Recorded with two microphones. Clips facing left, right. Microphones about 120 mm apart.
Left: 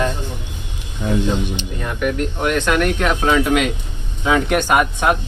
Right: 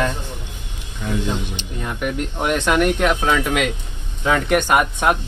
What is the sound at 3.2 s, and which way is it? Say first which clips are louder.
Speech: left 3 dB; 10° left (ahead or behind).